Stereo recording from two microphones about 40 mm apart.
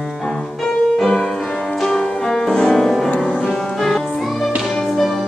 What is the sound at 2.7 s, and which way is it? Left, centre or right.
Music, centre.